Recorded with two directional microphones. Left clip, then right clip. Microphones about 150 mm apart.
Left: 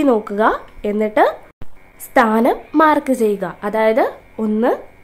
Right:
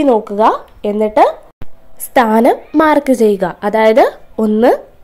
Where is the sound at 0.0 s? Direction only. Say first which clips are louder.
Right 4 dB; 5° right (ahead or behind).